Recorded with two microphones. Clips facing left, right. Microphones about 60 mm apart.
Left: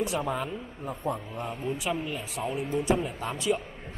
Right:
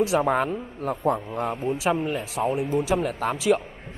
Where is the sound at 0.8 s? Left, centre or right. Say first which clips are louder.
Right 9 dB; right.